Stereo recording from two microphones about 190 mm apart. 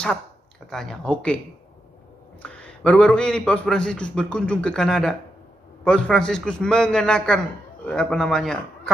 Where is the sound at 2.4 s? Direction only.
5° left (ahead or behind).